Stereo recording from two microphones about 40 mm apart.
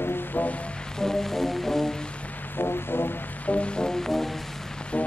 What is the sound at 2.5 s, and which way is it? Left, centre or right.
Music, left.